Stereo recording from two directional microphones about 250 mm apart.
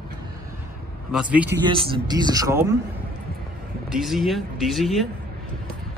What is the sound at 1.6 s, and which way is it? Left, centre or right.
Speech, centre.